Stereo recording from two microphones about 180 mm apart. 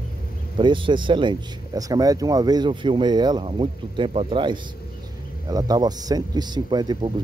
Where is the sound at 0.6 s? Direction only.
25° right (ahead or behind).